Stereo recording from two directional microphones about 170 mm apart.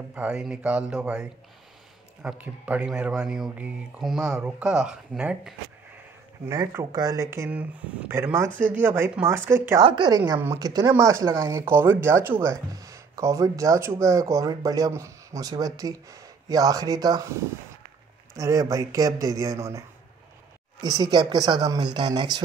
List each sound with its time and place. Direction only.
0.1 s speech: 5° right (ahead or behind)
2.2 s speech: 10° right (ahead or behind)
6.5 s speech: 20° right (ahead or behind)
9.8 s speech: 25° right (ahead or behind)
18.3 s speech: 20° right (ahead or behind)
20.8 s speech: 25° right (ahead or behind)